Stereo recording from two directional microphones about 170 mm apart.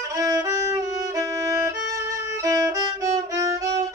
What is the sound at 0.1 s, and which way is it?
Violin, 20° right (ahead or behind).